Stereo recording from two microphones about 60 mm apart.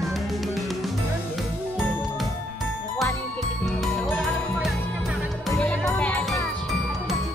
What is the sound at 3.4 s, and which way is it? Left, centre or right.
Music, centre.